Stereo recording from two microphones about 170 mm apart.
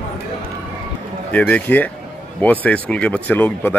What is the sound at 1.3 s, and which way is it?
Speech, 10° left (ahead or behind).